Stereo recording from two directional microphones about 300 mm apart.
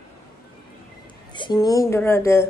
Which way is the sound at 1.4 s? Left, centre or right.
Centre.